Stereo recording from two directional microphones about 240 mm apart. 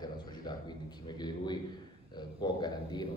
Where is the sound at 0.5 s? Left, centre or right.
Centre.